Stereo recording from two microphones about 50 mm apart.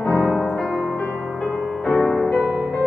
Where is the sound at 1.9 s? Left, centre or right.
Centre.